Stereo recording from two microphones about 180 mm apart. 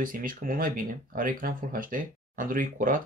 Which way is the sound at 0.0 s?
50° right (ahead or behind).